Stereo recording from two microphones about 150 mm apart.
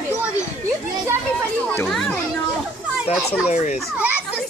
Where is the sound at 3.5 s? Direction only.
45° left (ahead or behind).